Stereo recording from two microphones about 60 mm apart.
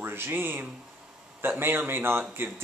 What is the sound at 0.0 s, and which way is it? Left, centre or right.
A man's voice, right.